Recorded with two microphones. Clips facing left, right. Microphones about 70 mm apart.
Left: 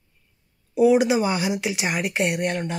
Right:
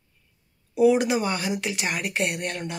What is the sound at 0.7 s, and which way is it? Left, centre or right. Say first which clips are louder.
Speech: left 2 dB; centre.